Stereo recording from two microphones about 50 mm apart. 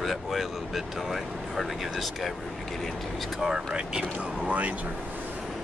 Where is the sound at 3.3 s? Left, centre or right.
Centre.